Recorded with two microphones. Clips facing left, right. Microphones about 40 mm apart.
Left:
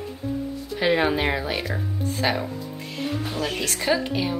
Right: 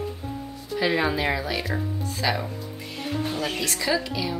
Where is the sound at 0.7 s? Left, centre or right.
Left.